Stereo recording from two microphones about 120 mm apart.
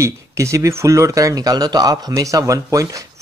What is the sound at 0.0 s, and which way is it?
Speech, 25° right (ahead or behind).